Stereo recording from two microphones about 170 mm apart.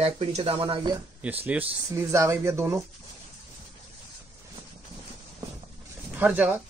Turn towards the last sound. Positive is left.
turn(degrees=-10)  # may be behind; listen again after turning